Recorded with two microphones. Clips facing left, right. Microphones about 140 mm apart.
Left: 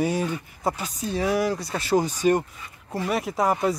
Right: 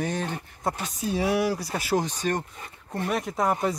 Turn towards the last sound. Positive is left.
turn(degrees=0)  # may be behind; listen again after turning